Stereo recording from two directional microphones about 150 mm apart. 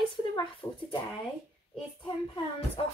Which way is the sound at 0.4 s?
35° left (ahead or behind).